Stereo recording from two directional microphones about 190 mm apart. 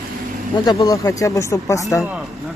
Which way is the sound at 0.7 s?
15° left (ahead or behind).